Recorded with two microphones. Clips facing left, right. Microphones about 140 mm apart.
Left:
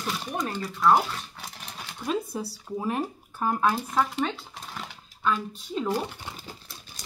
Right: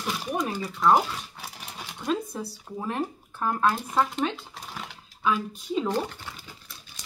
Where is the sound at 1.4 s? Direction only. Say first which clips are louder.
Right 1 dB; 10° right (ahead or behind).